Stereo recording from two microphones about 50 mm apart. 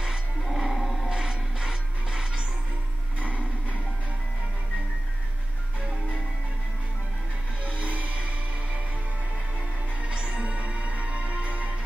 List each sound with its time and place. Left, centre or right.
0.5 s music: centre
1.0 s music: centre
3.2 s a sound: right
7.6 s music: right
10.0 s music: right